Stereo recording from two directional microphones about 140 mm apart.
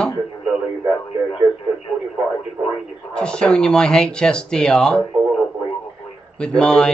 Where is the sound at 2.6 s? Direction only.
25° right (ahead or behind).